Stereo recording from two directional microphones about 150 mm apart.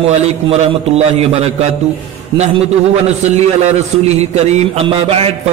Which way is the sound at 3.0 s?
50° right (ahead or behind).